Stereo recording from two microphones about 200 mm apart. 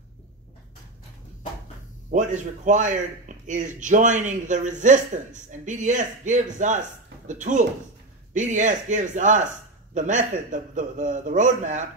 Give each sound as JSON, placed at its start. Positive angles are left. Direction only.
{"t": 2.0, "sound": "a man's voice", "side_deg": -40}